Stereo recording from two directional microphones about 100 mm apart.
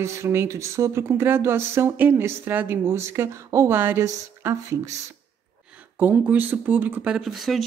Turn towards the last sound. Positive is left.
turn(degrees=0)  # may be behind; listen again after turning